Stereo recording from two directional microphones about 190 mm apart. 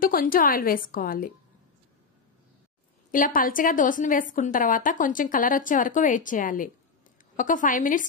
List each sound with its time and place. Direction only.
0.0 s a woman's voice: 45° left (ahead or behind)
3.1 s a woman's voice: 45° left (ahead or behind)